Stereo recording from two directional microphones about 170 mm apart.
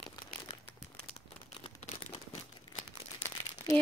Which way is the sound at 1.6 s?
25° left (ahead or behind).